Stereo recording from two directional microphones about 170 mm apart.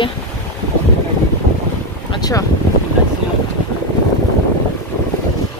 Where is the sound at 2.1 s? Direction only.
25° left (ahead or behind).